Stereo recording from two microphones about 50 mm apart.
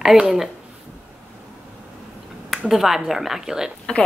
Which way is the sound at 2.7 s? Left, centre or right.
Centre.